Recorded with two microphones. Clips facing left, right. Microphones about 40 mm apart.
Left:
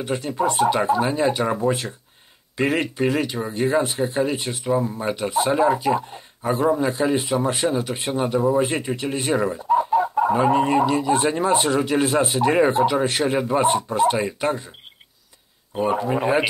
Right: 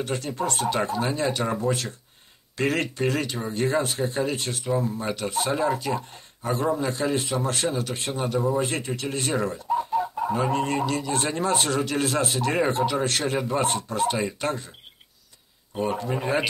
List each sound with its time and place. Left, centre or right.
0.0 s speech: centre
15.7 s speech: centre